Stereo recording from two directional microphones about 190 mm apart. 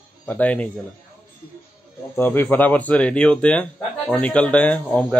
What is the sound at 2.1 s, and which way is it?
Speech, 10° left (ahead or behind).